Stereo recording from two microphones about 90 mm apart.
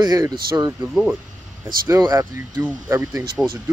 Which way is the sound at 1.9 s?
35° right (ahead or behind).